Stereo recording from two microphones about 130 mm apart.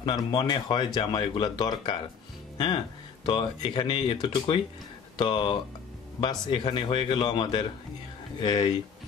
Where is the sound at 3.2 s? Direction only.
35° left (ahead or behind).